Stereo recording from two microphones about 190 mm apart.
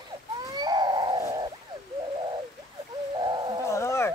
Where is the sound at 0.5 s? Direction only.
20° right (ahead or behind).